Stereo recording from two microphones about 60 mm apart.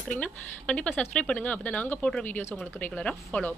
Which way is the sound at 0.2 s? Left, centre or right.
Centre.